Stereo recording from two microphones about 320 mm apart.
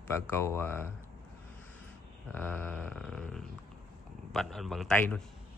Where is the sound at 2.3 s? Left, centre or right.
Centre.